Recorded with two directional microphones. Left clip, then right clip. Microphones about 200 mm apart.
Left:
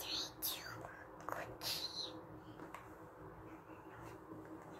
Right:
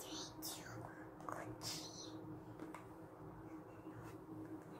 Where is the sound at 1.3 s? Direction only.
20° left (ahead or behind).